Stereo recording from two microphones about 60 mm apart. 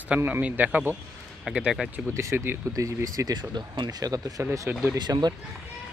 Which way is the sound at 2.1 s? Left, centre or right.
Right.